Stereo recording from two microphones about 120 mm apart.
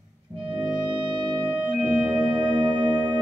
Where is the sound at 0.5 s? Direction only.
10° right (ahead or behind).